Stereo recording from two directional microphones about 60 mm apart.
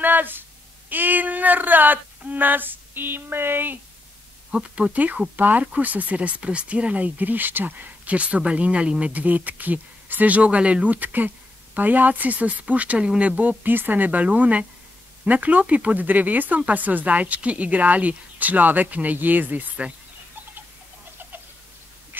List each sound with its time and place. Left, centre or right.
0.0 s speech: right
4.5 s speech: centre
4.9 s speech: right